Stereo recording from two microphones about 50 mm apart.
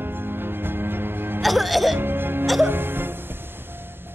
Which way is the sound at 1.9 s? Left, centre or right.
Right.